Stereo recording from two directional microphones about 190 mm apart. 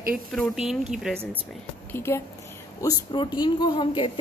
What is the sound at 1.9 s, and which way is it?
A woman's voice, 15° left (ahead or behind).